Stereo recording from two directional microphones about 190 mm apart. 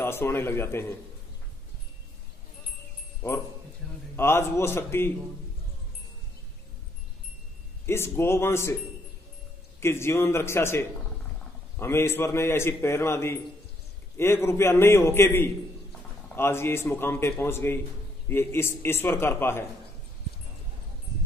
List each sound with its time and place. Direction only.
0.0 s a man's voice: 10° left (ahead or behind)
3.2 s a man's voice: 15° left (ahead or behind)
7.8 s a man's voice: 15° left (ahead or behind)
9.8 s a man's voice: 15° left (ahead or behind)